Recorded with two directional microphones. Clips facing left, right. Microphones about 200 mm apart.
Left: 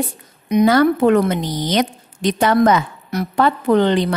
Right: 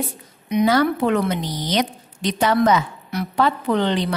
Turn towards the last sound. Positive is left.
turn(degrees=50)  # may be behind; listen again after turning